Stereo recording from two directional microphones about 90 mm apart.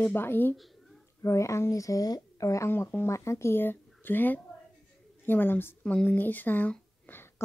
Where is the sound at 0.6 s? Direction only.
Centre (ahead or behind).